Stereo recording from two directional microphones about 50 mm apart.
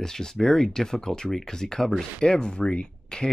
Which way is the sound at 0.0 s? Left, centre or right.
Centre.